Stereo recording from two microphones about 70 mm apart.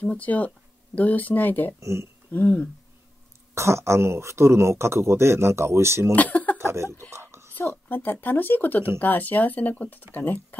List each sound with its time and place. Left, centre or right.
0.0 s speech: centre
1.8 s speech: right
2.3 s speech: left
3.5 s speech: right
6.1 s a sound: left
6.6 s a sound: right
7.9 s speech: left